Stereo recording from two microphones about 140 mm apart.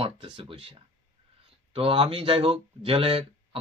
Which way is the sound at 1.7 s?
40° right (ahead or behind).